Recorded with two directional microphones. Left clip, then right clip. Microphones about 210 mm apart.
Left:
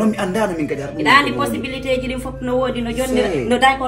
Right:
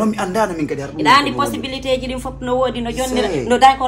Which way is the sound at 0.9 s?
20° right (ahead or behind).